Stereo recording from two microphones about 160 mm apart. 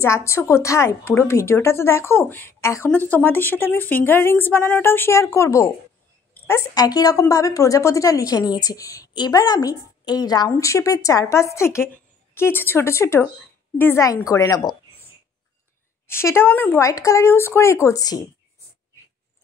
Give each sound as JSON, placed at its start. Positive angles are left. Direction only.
{"t": 0.0, "sound": "a woman's voice", "side_deg": 15}
{"t": 16.1, "sound": "a woman's voice", "side_deg": 15}